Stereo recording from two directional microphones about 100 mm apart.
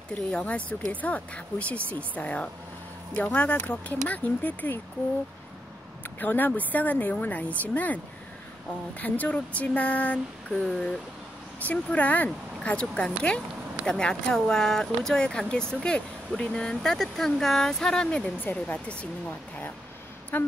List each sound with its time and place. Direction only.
0.1 s speech: 10° left (ahead or behind)
6.1 s speech: 20° left (ahead or behind)
9.0 s speech: 15° left (ahead or behind)